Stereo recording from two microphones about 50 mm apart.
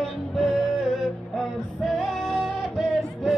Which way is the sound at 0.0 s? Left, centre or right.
Centre.